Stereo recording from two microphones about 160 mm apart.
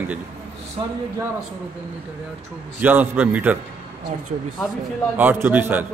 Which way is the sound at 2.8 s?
10° right (ahead or behind).